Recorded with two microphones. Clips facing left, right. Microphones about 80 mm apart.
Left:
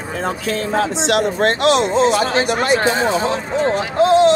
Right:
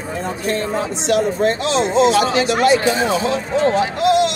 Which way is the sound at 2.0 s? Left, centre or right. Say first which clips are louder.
Right 1 dB; left.